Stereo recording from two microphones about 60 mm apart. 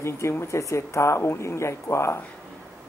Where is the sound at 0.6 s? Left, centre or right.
Left.